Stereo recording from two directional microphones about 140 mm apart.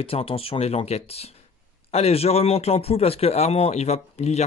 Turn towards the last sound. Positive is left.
turn(degrees=50)  # may be behind; listen again after turning